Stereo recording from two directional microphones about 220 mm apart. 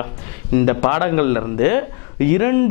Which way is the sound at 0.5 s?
15° left (ahead or behind).